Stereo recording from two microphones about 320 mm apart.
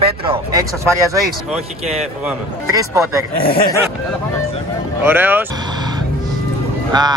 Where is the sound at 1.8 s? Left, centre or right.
Centre.